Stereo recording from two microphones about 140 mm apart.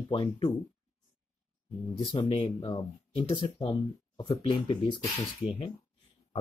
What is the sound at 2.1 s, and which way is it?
Speech, 35° left (ahead or behind).